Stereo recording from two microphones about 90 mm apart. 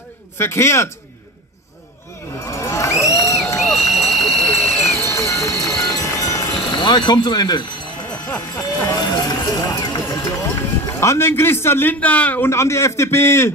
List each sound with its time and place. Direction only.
0.4 s a man's voice: 30° left (ahead or behind)
2.4 s a sound: 35° left (ahead or behind)
3.5 s a sound: centre (ahead or behind)
5.0 s clip-clop: 35° left (ahead or behind)
5.7 s run: 45° left (ahead or behind)
6.7 s speech: 55° left (ahead or behind)
10.9 s a man's voice: 35° left (ahead or behind); by 12.4 s 15° left (ahead or behind)
12.4 s a man's voice: 30° left (ahead or behind)